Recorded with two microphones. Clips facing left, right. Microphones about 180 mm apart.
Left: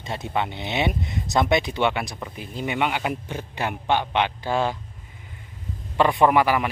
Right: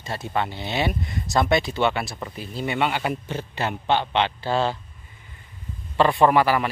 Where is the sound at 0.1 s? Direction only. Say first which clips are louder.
Even; 15° left (ahead or behind).